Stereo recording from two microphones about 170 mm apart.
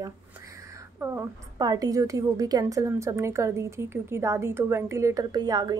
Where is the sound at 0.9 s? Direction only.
15° right (ahead or behind).